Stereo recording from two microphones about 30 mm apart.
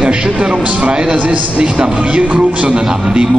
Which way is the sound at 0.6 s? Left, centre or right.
Right.